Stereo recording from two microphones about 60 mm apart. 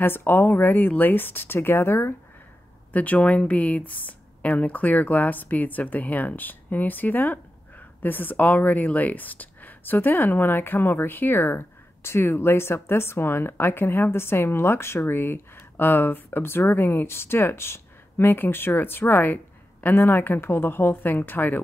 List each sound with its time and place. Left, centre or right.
0.0 s speech: left
2.9 s speech: left